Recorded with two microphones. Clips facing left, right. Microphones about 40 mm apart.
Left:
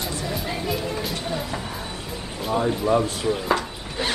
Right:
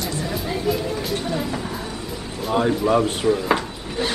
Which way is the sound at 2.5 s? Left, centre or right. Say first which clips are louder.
Right 3 dB; right.